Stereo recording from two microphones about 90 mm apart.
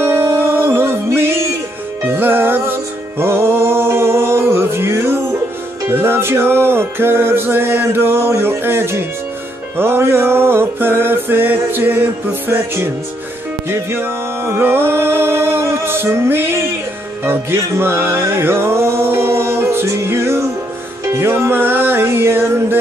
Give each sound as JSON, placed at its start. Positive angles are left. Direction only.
{"t": 0.0, "sound": "music", "side_deg": -30}